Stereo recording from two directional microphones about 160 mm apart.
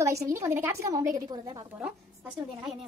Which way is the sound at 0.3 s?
15° right (ahead or behind).